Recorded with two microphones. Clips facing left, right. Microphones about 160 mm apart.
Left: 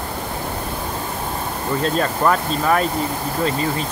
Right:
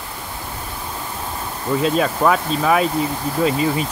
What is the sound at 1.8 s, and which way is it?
Speech, 5° right (ahead or behind).